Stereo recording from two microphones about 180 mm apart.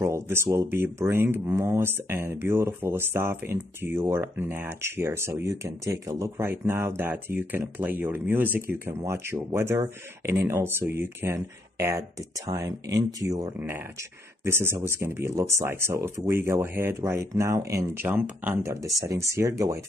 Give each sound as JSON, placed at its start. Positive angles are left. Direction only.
{"t": 0.0, "sound": "speech", "side_deg": -15}